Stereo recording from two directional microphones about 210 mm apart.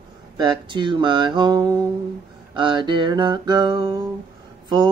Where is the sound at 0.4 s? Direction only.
20° right (ahead or behind).